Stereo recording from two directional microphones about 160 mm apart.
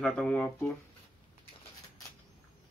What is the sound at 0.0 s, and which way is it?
Speech, 5° left (ahead or behind).